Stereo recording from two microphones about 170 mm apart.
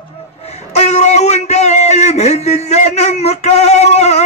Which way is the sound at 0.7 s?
40° left (ahead or behind).